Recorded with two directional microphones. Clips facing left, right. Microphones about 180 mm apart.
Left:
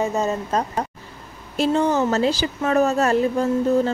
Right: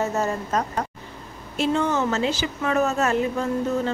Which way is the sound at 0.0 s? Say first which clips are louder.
Left 2 dB; 15° left (ahead or behind).